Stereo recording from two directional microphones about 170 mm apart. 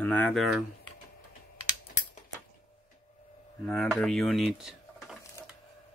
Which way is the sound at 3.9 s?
5° left (ahead or behind).